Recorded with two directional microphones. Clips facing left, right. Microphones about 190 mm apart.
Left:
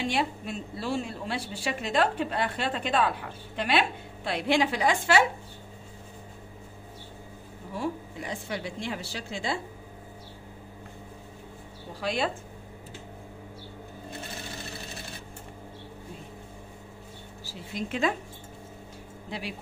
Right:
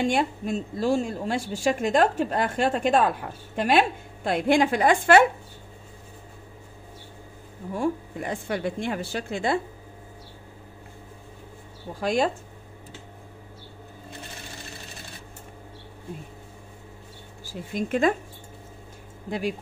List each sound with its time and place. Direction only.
0.0 s a woman's voice: 45° right (ahead or behind)
7.7 s a woman's voice: 50° right (ahead or behind)
12.0 s a woman's voice: 45° right (ahead or behind)
17.5 s a woman's voice: 50° right (ahead or behind)
19.3 s a woman's voice: 50° right (ahead or behind)